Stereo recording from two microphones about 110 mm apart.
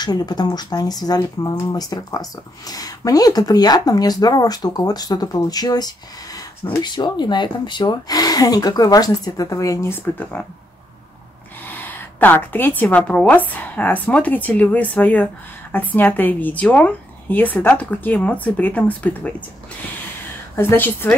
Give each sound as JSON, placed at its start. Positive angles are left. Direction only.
{"t": 0.0, "sound": "speech", "side_deg": 40}
{"t": 11.6, "sound": "a sound", "side_deg": 15}
{"t": 12.8, "sound": "a woman's voice", "side_deg": 10}
{"t": 20.5, "sound": "a woman's voice", "side_deg": 20}